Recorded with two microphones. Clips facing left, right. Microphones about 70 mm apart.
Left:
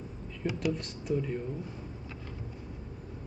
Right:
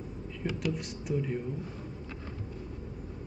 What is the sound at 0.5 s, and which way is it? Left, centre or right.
Speech, centre.